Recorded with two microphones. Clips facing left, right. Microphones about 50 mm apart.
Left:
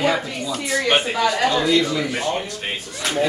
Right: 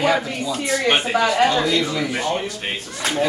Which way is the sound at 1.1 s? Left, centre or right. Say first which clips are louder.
Right 2 dB; right.